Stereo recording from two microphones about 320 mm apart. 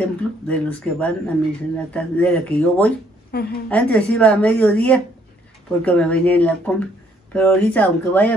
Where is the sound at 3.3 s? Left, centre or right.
Left.